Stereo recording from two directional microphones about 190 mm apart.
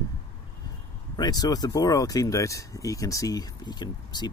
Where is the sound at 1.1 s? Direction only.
20° left (ahead or behind).